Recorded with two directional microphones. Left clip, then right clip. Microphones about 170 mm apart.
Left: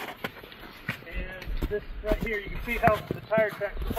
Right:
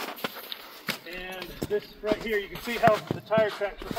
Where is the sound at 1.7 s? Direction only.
10° right (ahead or behind).